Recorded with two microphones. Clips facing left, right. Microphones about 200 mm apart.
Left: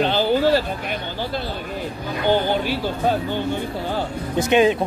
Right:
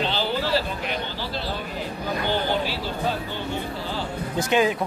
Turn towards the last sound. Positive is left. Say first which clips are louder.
# left 5 dB
turn(degrees=20)  # may be behind; listen again after turning